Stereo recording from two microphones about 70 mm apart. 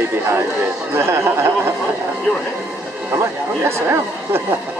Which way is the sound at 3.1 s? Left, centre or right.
Right.